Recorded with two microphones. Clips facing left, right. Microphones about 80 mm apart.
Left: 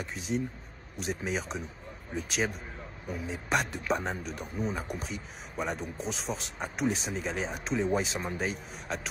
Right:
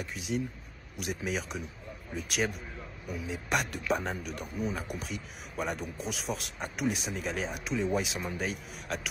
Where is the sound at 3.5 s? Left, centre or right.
Centre.